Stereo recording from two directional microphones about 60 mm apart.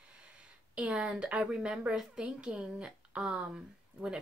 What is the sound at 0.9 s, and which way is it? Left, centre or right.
Speech, centre.